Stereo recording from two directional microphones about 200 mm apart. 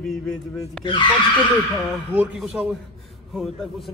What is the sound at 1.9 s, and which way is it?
Speech, 5° right (ahead or behind).